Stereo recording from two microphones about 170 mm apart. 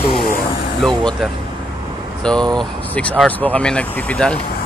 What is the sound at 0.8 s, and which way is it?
Speech, centre (ahead or behind).